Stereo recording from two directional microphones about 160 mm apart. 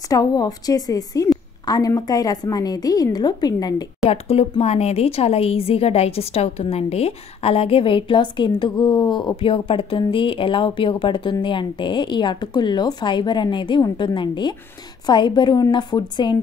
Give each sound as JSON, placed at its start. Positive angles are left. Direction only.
{"t": 0.1, "sound": "a woman's voice", "side_deg": 20}
{"t": 4.1, "sound": "a woman's voice", "side_deg": 40}